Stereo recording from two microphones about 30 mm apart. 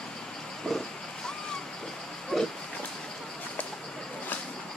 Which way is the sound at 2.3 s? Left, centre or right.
Centre.